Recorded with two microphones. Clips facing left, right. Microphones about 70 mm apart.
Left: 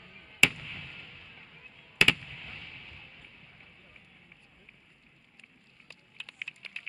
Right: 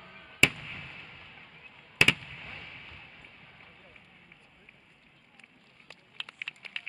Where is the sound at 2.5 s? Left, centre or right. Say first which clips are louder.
Right 1 dB; right.